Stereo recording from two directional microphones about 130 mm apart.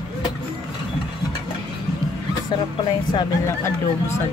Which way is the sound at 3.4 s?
20° left (ahead or behind).